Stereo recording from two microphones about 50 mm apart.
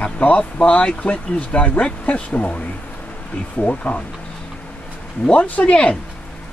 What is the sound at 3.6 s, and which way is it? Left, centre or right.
Speech, left.